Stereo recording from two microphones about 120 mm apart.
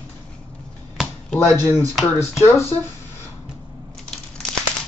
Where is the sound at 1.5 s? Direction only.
20° left (ahead or behind).